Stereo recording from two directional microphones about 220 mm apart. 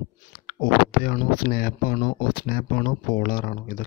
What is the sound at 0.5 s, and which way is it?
Speech, 40° left (ahead or behind).